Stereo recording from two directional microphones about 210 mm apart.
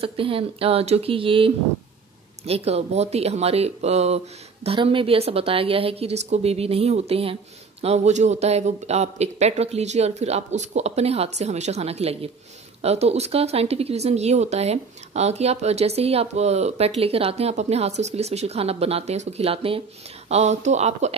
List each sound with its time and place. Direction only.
0.0 s speech: 25° right (ahead or behind)